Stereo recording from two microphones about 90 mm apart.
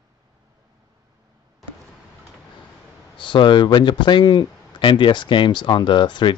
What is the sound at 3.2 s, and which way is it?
Speech, 65° left (ahead or behind).